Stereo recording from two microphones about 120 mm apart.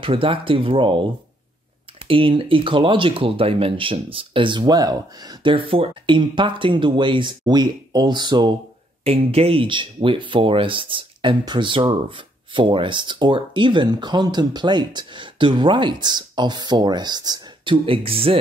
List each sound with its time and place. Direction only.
0.0 s speech: 45° right (ahead or behind)
2.0 s speech: 45° right (ahead or behind)
9.0 s speech: 55° right (ahead or behind); by 17.7 s 35° right (ahead or behind)
17.8 s speech: 50° right (ahead or behind)